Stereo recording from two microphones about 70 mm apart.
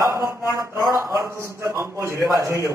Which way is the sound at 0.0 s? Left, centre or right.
Right.